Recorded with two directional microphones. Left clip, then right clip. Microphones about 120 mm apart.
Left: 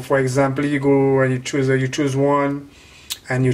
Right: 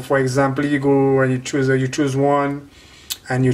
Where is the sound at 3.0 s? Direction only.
10° right (ahead or behind).